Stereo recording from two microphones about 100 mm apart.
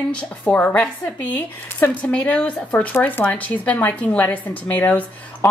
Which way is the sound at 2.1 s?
10° left (ahead or behind).